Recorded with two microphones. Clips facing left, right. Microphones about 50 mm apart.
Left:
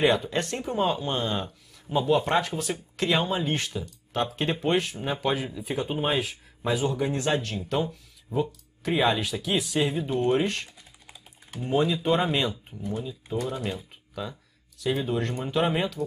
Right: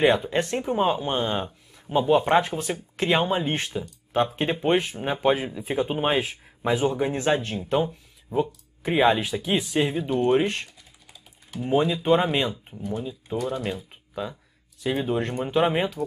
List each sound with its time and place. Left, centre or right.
0.0 s speech: centre
6.0 s speech: right